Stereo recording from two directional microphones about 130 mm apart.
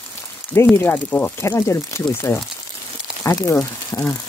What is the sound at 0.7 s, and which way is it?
Speech, 15° left (ahead or behind).